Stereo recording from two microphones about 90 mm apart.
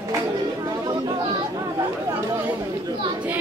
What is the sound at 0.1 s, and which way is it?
Chatter, 45° right (ahead or behind).